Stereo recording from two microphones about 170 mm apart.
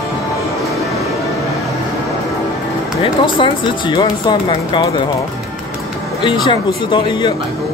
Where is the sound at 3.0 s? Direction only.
30° left (ahead or behind).